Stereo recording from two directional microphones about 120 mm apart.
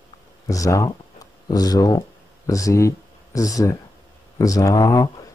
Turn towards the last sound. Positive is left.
turn(degrees=30)  # may be behind; listen again after turning